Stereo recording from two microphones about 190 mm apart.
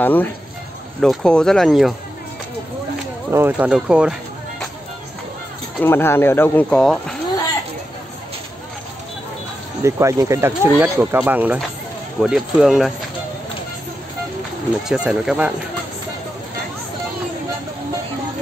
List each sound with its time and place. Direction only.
0.0 s speech: 10° left (ahead or behind)
3.3 s speech: 10° right (ahead or behind)
5.8 s speech: 10° left (ahead or behind)
9.8 s speech: 15° right (ahead or behind)
14.9 s speech: 5° right (ahead or behind)